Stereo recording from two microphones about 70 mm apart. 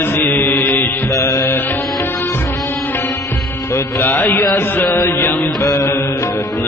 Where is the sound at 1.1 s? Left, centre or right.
Left.